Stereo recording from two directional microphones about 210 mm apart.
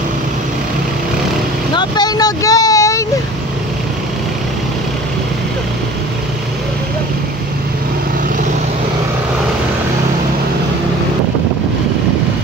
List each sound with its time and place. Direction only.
1.7 s vehicle: 20° left (ahead or behind)